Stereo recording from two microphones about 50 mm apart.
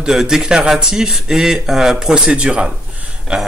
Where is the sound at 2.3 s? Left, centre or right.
Right.